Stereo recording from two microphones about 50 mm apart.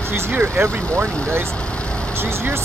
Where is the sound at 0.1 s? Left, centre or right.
Right.